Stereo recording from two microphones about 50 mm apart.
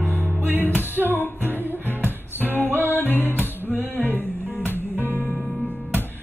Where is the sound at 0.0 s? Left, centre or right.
Right.